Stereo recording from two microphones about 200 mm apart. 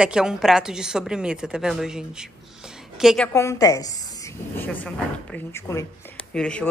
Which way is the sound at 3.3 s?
15° left (ahead or behind).